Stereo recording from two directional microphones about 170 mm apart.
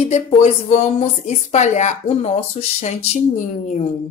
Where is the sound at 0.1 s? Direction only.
40° left (ahead or behind).